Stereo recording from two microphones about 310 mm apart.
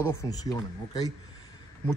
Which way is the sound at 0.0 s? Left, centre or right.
Centre.